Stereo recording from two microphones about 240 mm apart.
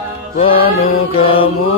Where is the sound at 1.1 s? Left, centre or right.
Left.